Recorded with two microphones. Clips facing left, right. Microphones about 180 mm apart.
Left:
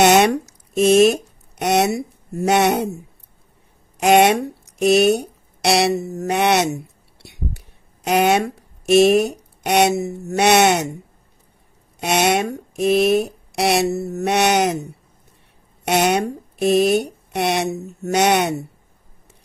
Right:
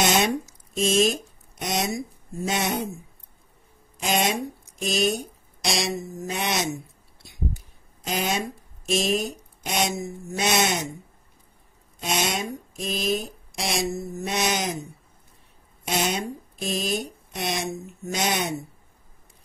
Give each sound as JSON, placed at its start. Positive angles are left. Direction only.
{"t": 0.0, "sound": "speech", "side_deg": 65}
{"t": 4.0, "sound": "speech", "side_deg": 70}
{"t": 12.0, "sound": "speech", "side_deg": 70}